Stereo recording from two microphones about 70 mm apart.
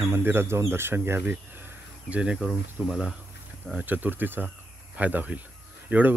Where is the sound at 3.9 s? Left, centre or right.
Right.